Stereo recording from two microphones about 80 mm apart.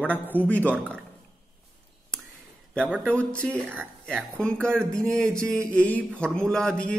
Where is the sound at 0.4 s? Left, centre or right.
Centre.